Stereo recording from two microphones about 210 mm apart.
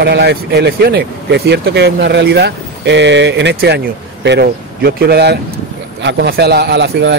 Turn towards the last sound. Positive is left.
turn(degrees=-55)  # may be behind; listen again after turning